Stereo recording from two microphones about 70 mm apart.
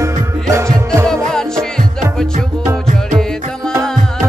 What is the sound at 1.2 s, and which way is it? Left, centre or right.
Music, centre.